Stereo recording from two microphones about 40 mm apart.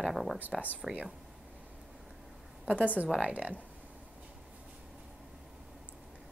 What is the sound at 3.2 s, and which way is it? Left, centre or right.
Speech, right.